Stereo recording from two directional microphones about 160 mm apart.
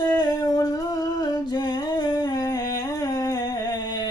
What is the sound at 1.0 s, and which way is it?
Humming, 25° left (ahead or behind).